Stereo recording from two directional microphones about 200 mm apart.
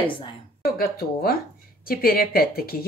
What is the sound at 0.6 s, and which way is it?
Speech, 50° left (ahead or behind).